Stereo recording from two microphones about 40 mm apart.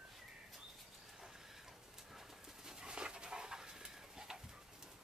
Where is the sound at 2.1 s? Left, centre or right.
Centre.